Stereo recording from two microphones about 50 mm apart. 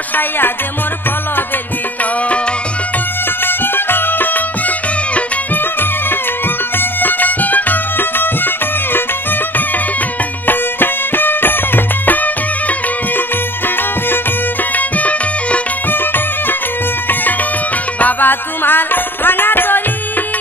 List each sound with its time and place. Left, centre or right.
3.4 s music: left
10.4 s music: left
14.8 s music: left
15.9 s music: left
17.9 s music: left